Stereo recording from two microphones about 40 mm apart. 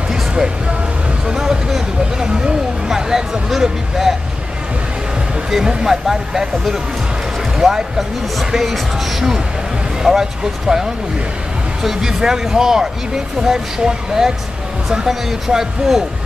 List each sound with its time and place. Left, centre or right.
1.2 s speech: centre
5.9 s speech: centre